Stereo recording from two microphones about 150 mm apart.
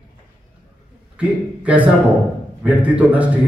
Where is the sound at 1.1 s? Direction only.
10° right (ahead or behind).